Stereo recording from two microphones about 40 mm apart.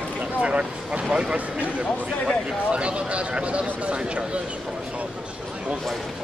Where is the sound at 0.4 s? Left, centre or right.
Right.